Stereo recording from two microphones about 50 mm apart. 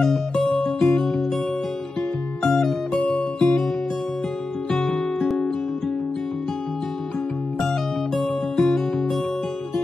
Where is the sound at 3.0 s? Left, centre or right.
Left.